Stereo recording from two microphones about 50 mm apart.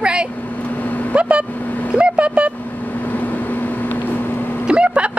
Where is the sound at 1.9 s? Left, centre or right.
Right.